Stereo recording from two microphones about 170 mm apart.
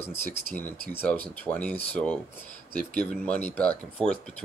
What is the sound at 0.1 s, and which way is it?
Speech, 60° right (ahead or behind).